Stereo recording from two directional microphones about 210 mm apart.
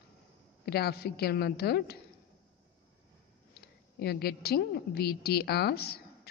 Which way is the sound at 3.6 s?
50° left (ahead or behind).